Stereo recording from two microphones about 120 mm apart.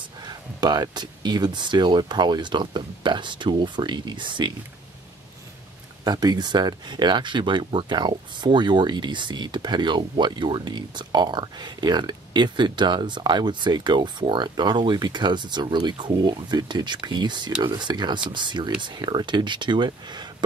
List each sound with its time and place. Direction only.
0.3 s speech: 35° right (ahead or behind)
6.0 s speech: 35° right (ahead or behind)